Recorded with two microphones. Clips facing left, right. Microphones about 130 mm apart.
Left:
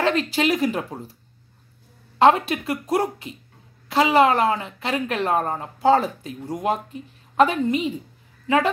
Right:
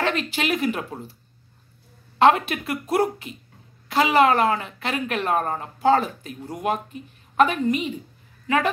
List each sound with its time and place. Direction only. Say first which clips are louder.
0.0 s speech: left 4 dB; 30° left (ahead or behind)
2.1 s speech: left 1 dB; 35° left (ahead or behind)